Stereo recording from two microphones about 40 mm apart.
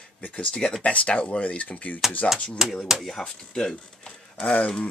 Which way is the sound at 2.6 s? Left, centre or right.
Centre.